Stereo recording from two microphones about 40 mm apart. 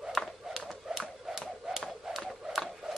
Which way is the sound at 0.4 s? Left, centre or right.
Centre.